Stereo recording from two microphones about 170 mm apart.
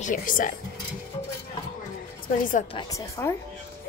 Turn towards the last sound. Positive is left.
turn(degrees=20)  # may be behind; listen again after turning